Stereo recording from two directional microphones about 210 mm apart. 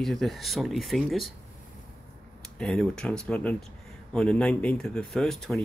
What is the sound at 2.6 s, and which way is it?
Speech, centre (ahead or behind).